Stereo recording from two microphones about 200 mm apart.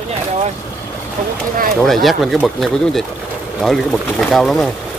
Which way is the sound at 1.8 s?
Centre (ahead or behind).